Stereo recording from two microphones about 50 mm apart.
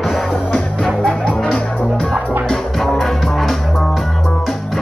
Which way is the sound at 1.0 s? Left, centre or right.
Centre.